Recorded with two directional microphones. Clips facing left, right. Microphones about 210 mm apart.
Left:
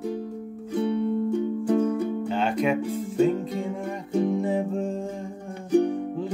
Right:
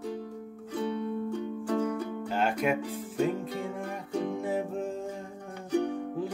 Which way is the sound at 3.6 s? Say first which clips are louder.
Left 5 dB; 5° left (ahead or behind).